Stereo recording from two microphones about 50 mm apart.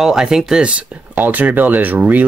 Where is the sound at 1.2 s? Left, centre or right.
Right.